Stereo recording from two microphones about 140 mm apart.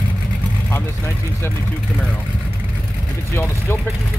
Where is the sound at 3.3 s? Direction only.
15° left (ahead or behind).